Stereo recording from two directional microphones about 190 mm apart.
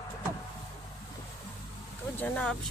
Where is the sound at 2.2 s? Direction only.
10° left (ahead or behind).